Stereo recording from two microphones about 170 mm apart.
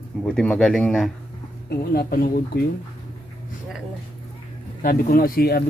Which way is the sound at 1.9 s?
60° left (ahead or behind).